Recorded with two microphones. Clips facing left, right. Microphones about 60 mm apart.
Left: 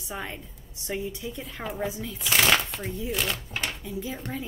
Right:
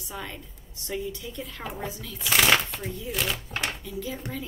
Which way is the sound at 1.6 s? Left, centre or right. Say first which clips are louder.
Left 5 dB; centre.